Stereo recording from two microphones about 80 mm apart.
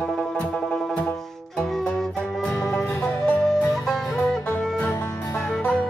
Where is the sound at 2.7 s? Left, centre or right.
Centre.